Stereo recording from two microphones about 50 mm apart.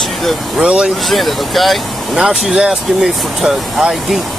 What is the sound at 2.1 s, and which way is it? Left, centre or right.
Speech, centre.